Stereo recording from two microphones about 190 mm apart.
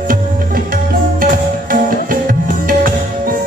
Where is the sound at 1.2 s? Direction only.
45° right (ahead or behind).